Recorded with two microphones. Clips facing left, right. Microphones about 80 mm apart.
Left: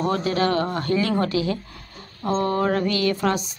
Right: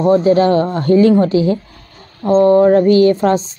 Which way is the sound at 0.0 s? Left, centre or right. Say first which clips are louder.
Right 11 dB; right.